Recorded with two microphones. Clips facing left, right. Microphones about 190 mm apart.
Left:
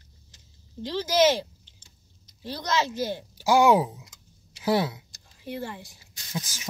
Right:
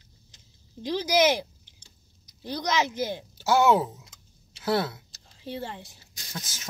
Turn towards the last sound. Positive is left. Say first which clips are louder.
# left 5 dB
turn(degrees=10)  # may be behind; listen again after turning